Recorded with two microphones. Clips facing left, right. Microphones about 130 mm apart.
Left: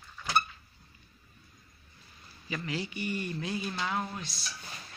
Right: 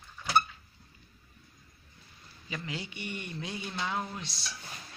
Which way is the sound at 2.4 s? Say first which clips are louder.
Left 3 dB; 20° right (ahead or behind).